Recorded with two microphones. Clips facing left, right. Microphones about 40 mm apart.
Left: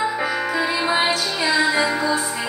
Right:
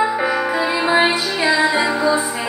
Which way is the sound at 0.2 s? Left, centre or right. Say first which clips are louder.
Right 3 dB; centre.